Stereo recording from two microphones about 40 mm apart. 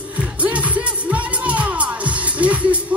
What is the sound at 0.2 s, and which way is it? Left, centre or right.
Music, right.